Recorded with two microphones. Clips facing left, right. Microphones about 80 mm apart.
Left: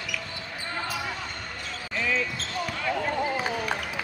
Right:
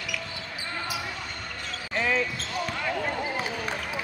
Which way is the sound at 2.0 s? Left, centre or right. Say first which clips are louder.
Right 2 dB; right.